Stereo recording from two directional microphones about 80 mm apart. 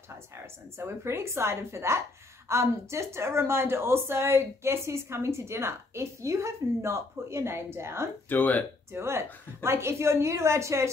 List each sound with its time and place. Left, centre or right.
0.7 s speech: right
8.3 s speech: centre
8.9 s speech: right